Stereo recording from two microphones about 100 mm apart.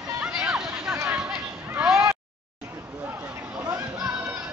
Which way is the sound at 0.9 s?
20° right (ahead or behind).